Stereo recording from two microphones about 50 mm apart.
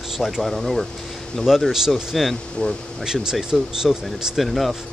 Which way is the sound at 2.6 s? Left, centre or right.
Left.